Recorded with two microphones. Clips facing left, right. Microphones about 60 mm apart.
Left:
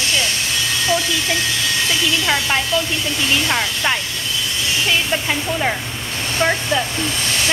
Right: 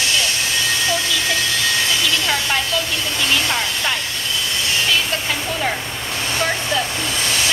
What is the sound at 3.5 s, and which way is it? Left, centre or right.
Speech, centre.